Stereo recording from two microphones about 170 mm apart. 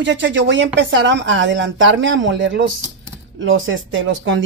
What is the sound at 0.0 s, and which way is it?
A woman's voice, 90° right.